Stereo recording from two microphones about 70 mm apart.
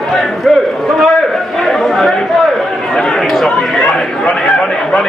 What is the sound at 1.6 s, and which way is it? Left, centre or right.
Chatter, centre.